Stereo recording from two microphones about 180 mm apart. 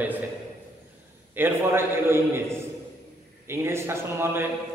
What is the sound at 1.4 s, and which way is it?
A man's voice, 10° right (ahead or behind).